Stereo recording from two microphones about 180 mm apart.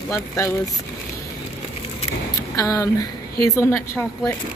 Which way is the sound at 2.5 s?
20° left (ahead or behind).